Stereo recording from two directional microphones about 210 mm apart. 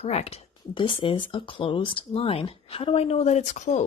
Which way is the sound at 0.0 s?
30° left (ahead or behind).